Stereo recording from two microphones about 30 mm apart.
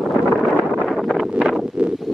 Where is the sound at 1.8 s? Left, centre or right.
Right.